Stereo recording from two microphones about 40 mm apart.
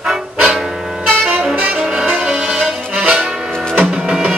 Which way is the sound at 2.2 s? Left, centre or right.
Centre.